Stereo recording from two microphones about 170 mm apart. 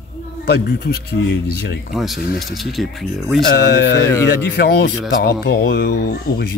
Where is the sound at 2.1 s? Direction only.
65° left (ahead or behind).